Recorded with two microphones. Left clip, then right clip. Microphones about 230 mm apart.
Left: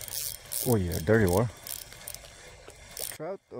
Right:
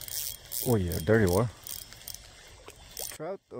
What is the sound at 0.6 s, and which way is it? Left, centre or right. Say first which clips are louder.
Speech: left 1 dB; centre.